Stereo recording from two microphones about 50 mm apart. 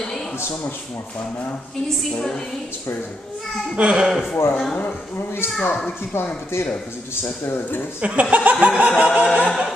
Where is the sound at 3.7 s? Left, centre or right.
Centre.